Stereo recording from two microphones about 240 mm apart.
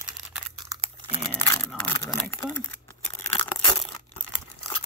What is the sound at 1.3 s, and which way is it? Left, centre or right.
Crumpling, centre.